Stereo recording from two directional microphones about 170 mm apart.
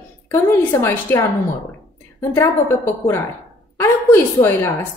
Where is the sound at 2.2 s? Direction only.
15° left (ahead or behind).